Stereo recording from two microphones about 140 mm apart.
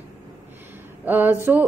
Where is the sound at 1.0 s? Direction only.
15° right (ahead or behind).